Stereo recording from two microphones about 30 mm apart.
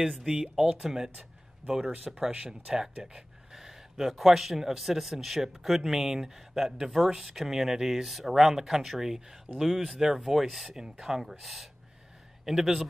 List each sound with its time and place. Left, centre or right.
0.2 s speech: centre
1.7 s a man's voice: right; by 10.8 s centre
10.8 s speech: centre